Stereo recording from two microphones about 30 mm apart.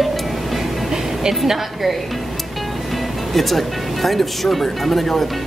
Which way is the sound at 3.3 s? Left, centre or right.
Centre.